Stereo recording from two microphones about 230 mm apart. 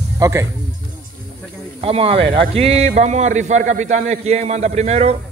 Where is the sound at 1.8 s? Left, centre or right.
Right.